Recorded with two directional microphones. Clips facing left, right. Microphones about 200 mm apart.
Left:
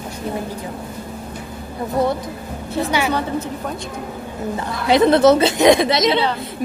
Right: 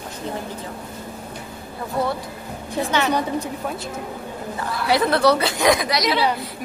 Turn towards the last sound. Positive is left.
turn(degrees=25)  # may be behind; listen again after turning